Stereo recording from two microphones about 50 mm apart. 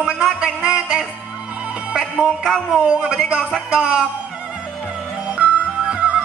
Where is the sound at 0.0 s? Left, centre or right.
Centre.